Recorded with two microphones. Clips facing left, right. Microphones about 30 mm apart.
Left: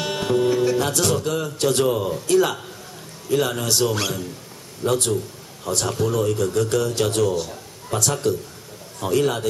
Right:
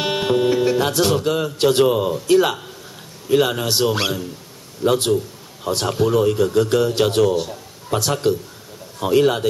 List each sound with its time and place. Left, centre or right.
0.0 s a man's voice: right